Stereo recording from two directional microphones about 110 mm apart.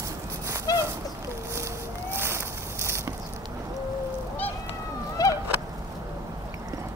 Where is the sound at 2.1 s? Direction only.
25° right (ahead or behind).